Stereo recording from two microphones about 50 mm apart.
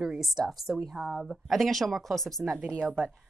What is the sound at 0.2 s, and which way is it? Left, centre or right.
Speech, centre.